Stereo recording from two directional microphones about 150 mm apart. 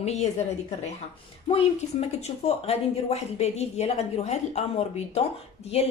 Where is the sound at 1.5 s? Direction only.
45° left (ahead or behind).